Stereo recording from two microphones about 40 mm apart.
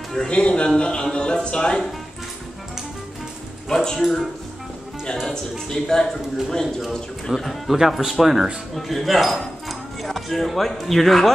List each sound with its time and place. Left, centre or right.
0.3 s speech: left
3.6 s a man's voice: centre
4.0 s speech: centre
5.3 s a man's voice: centre
7.8 s speech: centre